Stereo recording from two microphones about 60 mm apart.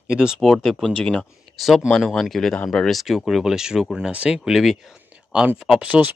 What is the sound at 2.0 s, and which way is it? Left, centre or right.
Speech, centre.